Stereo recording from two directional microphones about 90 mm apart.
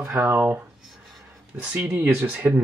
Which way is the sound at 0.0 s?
30° right (ahead or behind).